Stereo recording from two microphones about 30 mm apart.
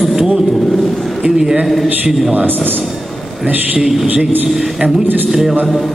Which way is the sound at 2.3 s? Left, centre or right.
Right.